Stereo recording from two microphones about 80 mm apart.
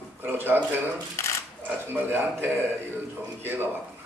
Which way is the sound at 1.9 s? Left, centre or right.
Right.